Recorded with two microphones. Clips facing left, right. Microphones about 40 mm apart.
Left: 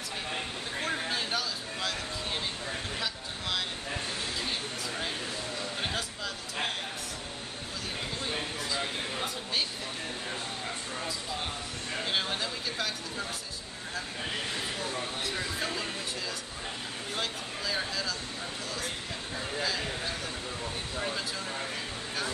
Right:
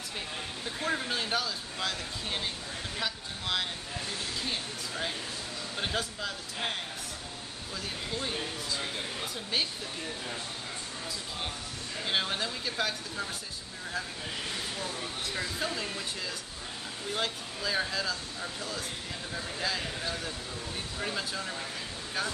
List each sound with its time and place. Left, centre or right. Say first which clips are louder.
0.8 s a sound: right 2 dB; centre
5.8 s a sound: right 5 dB; centre
12.1 s speech: right 2 dB; centre
14.8 s speech: left 2 dB; centre
15.3 s speech: right 2 dB; centre
17.1 s speech: right 2 dB; centre
19.6 s speech: even; centre